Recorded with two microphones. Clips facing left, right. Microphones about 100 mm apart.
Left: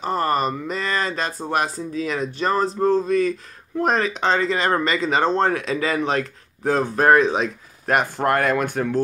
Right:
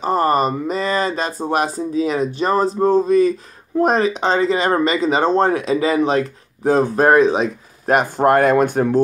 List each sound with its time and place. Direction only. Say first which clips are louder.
0.0 s speech: right 5 dB; 20° right (ahead or behind)